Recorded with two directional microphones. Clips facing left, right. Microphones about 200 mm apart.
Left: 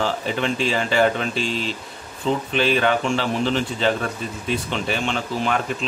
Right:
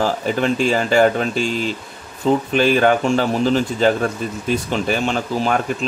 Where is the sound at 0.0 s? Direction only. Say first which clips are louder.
Right 4 dB; 45° right (ahead or behind).